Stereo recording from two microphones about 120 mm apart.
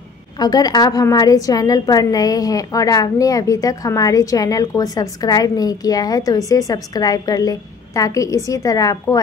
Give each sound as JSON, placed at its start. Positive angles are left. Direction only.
{"t": 0.4, "sound": "a woman's voice", "side_deg": 35}